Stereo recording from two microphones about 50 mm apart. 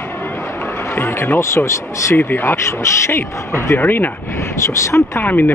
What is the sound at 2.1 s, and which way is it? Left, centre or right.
Speech, left.